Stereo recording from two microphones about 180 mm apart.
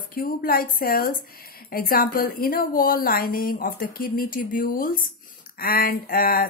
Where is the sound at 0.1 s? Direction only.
55° left (ahead or behind).